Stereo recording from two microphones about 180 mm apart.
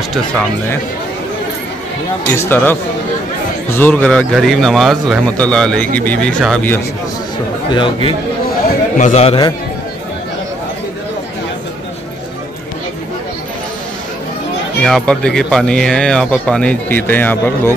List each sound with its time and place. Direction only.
2.2 s speech: 15° left (ahead or behind)
7.7 s speech: 25° left (ahead or behind)
8.9 s a man's voice: 40° left (ahead or behind)
14.8 s speech: 5° left (ahead or behind)